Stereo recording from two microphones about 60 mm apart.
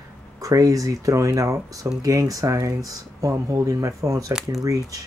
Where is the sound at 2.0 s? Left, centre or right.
Right.